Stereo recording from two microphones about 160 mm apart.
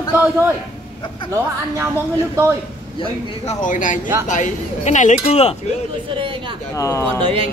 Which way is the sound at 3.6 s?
55° left (ahead or behind).